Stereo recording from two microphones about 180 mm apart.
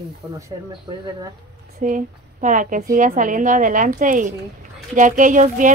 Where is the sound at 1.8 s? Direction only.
45° right (ahead or behind).